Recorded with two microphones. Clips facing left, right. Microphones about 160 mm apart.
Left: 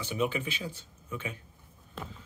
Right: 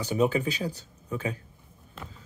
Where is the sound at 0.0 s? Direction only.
40° right (ahead or behind).